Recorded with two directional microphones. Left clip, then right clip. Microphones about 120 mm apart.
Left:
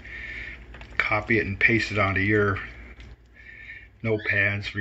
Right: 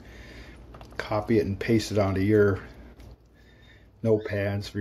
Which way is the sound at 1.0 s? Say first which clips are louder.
Left 3 dB; 60° right (ahead or behind).